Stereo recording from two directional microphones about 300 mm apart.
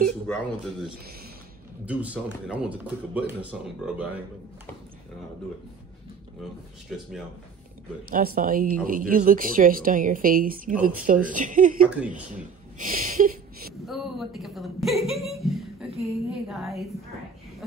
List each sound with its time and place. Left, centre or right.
0.3 s speech: centre
6.9 s speech: centre
8.1 s speech: right
11.8 s speech: centre
12.1 s speech: right
13.8 s a woman's voice: centre